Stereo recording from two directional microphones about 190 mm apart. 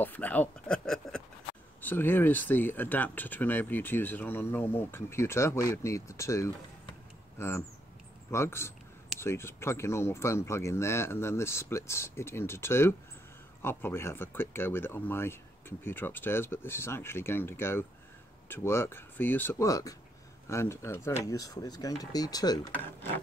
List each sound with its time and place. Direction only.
0.0 s speech: 10° left (ahead or behind)